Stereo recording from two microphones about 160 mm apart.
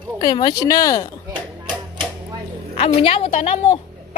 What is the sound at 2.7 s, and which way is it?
A woman's voice, 40° left (ahead or behind).